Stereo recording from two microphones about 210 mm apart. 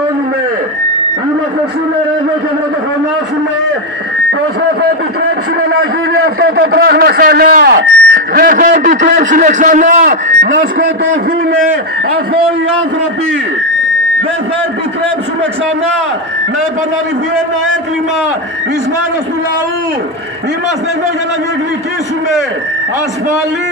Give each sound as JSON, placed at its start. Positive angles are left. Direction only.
{"t": 5.8, "sound": "a man's voice", "side_deg": -75}
{"t": 6.6, "sound": "a man's voice", "side_deg": -45}
{"t": 10.4, "sound": "speech", "side_deg": -60}